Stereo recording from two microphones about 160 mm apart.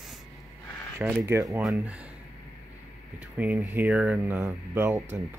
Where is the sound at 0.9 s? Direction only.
15° right (ahead or behind).